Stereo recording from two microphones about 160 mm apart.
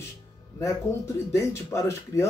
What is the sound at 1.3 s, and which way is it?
Speech, 15° left (ahead or behind).